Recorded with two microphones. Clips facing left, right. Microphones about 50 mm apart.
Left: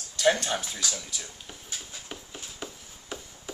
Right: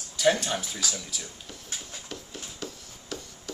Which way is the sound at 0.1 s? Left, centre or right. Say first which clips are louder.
Even; centre.